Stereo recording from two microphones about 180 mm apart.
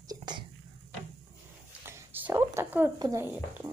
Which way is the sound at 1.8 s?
15° right (ahead or behind).